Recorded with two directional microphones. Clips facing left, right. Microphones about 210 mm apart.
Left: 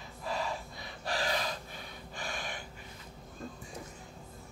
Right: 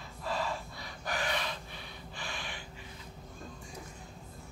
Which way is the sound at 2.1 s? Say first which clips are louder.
Left 3 dB; 45° left (ahead or behind).